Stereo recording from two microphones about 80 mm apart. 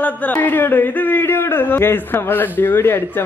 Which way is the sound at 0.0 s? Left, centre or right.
Centre.